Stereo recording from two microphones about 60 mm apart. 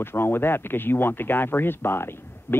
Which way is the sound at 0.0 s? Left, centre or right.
Left.